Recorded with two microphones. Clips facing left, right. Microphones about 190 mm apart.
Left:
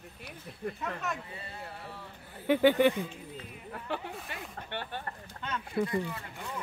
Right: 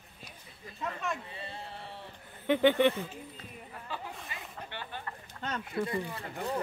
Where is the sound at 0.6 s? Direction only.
60° left (ahead or behind).